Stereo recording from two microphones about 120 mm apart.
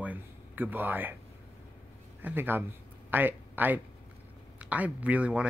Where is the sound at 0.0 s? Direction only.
15° right (ahead or behind).